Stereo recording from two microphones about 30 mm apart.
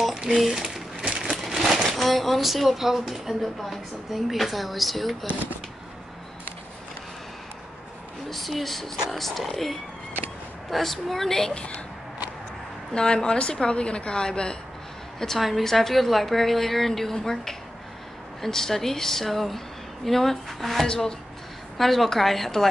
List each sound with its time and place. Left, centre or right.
0.1 s speech: centre
1.0 s a sound: right
1.5 s a sound: centre
1.9 s speech: centre
8.3 s speech: centre
11.2 s a woman's voice: centre
12.9 s a woman's voice: left
15.3 s speech: centre
15.6 s a woman's voice: centre